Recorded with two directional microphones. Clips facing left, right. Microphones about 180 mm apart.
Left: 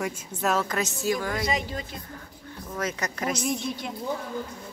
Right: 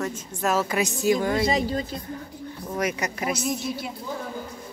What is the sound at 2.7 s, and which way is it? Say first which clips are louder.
Speech: right 3 dB; 10° right (ahead or behind).